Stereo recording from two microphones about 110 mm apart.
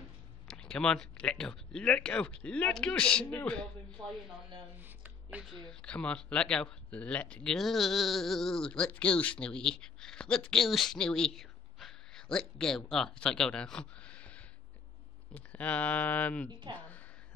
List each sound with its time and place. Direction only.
0.5 s speech: 5° left (ahead or behind)
4.7 s a sound: 15° right (ahead or behind)
5.5 s speech: 5° left (ahead or behind)
16.7 s a woman's voice: 45° right (ahead or behind)